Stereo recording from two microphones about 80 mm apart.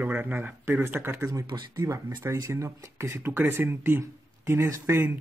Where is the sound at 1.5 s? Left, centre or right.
Right.